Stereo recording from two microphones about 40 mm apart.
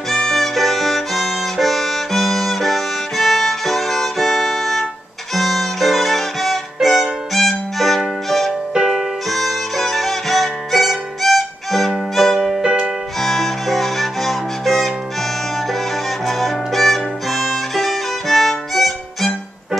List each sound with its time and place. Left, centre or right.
0.1 s violin: centre
8.3 s music: centre
12.6 s music: right
13.2 s music: centre
16.3 s violin: centre